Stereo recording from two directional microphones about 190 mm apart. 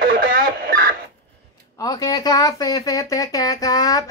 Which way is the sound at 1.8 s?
20° left (ahead or behind).